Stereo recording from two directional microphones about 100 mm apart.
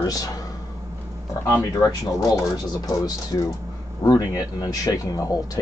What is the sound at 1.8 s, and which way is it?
Speech, 35° left (ahead or behind).